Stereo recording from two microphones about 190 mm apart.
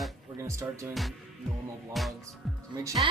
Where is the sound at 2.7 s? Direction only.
15° right (ahead or behind).